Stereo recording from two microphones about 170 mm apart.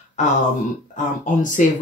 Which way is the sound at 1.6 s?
50° left (ahead or behind).